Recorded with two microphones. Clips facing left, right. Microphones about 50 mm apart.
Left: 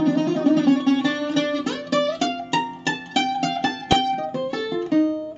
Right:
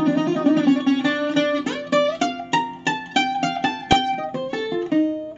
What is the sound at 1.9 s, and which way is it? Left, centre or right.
Music, right.